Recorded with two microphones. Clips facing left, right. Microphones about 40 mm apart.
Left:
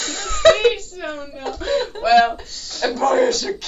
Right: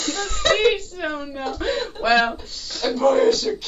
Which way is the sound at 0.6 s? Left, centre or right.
Right.